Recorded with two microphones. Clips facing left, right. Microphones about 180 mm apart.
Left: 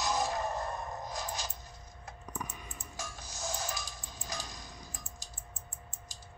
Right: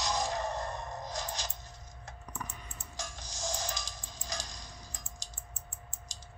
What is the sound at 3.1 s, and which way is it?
Music, 90° right.